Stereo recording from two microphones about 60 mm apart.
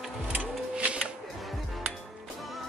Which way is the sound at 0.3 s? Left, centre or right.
Centre.